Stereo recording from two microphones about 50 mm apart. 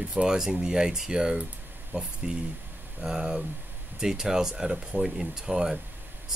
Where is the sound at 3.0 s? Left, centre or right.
Centre.